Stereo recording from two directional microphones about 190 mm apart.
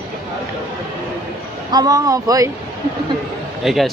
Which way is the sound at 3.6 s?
Centre (ahead or behind).